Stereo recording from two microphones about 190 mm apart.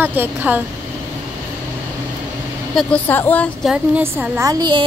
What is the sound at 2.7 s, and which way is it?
A woman's voice, 10° left (ahead or behind).